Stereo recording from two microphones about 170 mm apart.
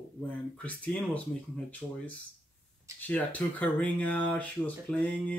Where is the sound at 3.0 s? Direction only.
10° left (ahead or behind).